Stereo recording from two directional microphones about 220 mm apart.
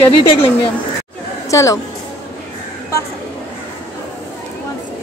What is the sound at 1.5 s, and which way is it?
Speech, 15° left (ahead or behind).